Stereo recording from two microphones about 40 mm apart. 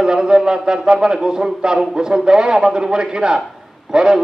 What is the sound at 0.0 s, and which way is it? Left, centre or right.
A man's voice, right.